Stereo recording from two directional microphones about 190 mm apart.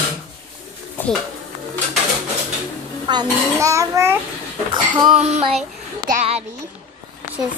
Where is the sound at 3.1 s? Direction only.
25° right (ahead or behind).